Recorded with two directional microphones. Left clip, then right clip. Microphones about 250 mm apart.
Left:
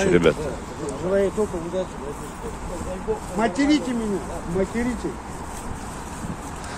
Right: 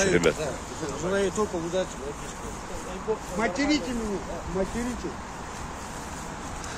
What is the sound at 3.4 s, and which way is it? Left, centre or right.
Speech, left.